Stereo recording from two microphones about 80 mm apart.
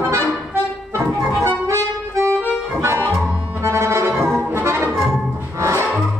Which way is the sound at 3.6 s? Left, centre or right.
Right.